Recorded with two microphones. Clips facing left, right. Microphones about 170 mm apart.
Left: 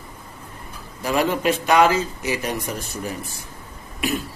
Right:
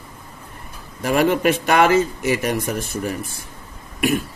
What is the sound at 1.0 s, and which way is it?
Speech, 60° right (ahead or behind).